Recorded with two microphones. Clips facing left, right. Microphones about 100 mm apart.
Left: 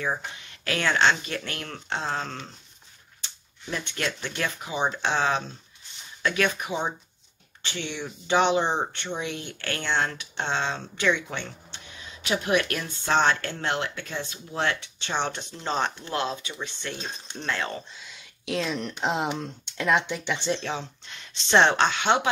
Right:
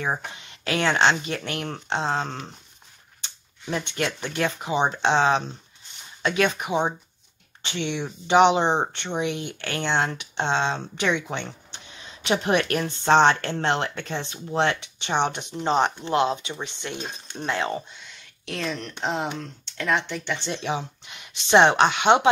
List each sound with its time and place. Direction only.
0.0 s speech: 25° right (ahead or behind)
12.3 s speech: 35° right (ahead or behind)
17.9 s speech: 5° left (ahead or behind)
20.5 s speech: 15° right (ahead or behind)